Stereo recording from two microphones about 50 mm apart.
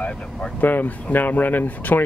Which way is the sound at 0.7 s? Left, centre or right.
Left.